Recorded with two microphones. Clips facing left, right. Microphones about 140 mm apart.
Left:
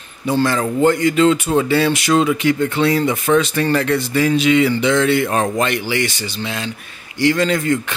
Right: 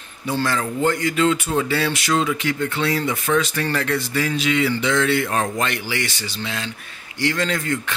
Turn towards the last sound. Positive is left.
turn(degrees=15)  # may be behind; listen again after turning